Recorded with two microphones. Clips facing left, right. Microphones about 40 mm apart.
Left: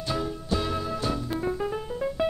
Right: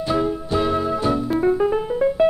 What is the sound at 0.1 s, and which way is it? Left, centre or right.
Music, right.